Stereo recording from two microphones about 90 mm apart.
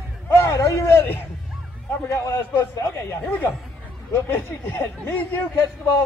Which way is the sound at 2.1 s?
30° left (ahead or behind).